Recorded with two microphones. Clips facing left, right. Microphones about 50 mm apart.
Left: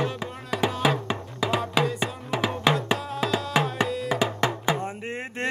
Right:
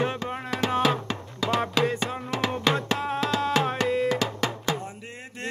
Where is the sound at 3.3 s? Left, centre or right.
Centre.